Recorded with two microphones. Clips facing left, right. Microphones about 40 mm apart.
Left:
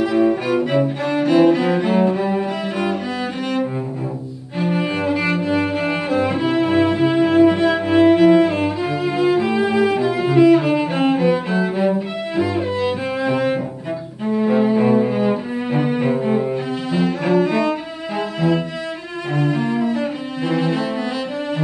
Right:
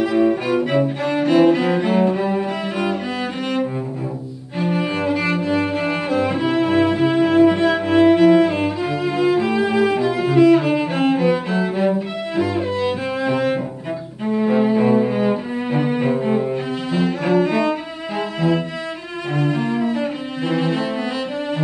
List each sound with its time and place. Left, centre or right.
0.7 s music: centre
1.2 s cello: centre
4.6 s music: centre
14.4 s cello: centre
17.3 s cello: centre
18.1 s cello: centre
19.4 s cello: centre